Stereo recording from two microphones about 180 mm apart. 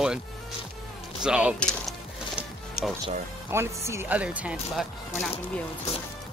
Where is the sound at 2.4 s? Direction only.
Centre (ahead or behind).